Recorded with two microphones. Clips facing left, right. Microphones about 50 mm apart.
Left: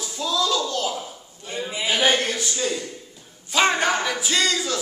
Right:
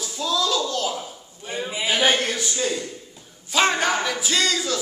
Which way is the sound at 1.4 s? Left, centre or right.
Centre.